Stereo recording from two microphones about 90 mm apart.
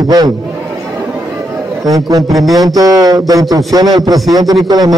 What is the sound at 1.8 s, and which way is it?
A man's voice, 40° right (ahead or behind).